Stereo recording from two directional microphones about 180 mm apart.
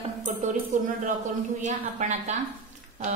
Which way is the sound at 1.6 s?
40° right (ahead or behind).